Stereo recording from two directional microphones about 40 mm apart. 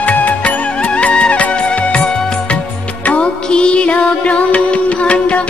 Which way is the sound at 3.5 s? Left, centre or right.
Left.